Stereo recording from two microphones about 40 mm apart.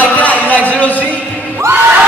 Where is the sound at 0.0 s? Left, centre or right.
Left.